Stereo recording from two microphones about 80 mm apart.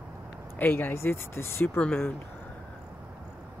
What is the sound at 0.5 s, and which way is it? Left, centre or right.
Speech, left.